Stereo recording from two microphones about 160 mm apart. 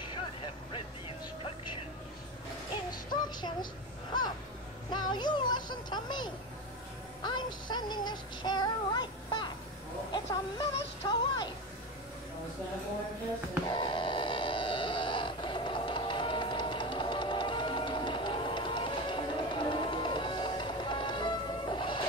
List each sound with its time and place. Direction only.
0.7 s music: 35° left (ahead or behind)
2.9 s music: 25° left (ahead or behind)
4.9 s music: 25° left (ahead or behind)
7.2 s synthetic singing: 25° left (ahead or behind)
10.1 s speech: 25° left (ahead or behind)
13.7 s a sound: 30° left (ahead or behind)